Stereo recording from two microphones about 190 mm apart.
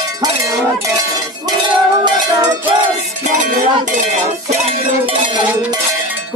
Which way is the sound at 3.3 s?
40° right (ahead or behind).